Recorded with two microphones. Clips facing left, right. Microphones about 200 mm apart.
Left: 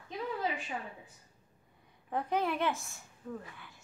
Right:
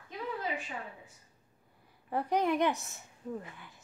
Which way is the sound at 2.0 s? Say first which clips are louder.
Right 3 dB; 10° right (ahead or behind).